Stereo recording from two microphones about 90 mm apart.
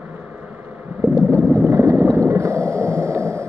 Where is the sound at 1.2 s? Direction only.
35° right (ahead or behind).